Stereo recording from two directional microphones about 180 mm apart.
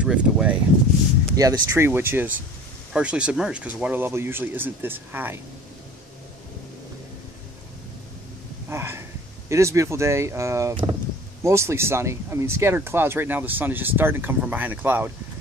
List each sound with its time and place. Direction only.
0.0 s speech: 5° right (ahead or behind)
1.3 s speech: 20° right (ahead or behind)
8.6 s a sound: 15° right (ahead or behind)
9.5 s speech: 15° right (ahead or behind)